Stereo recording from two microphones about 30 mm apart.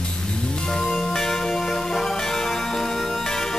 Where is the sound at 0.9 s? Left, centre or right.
Centre.